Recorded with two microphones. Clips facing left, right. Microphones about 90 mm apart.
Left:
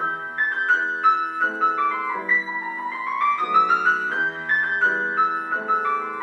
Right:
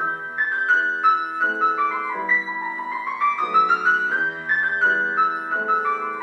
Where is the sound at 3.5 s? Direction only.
10° right (ahead or behind).